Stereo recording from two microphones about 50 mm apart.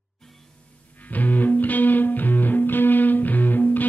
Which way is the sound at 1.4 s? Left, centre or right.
Left.